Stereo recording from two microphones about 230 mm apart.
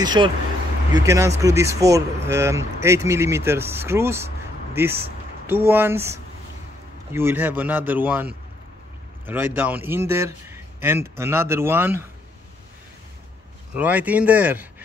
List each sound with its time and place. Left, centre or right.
0.0 s a man's voice: centre
13.7 s a man's voice: centre